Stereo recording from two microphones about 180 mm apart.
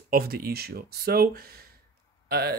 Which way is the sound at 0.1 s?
55° right (ahead or behind).